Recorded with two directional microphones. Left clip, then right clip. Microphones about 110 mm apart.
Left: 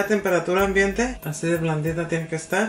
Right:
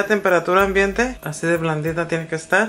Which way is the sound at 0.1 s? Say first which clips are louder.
Right 4 dB; 20° right (ahead or behind).